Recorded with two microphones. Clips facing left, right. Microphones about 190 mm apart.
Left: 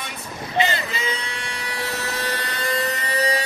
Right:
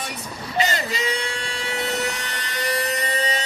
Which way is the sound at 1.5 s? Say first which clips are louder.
Right 3 dB; 25° right (ahead or behind).